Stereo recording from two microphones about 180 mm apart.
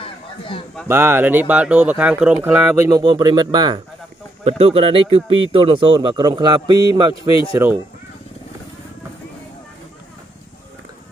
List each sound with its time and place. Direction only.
0.0 s a sound: 30° left (ahead or behind)
0.8 s speech: 10° right (ahead or behind)
7.5 s speech: 10° right (ahead or behind)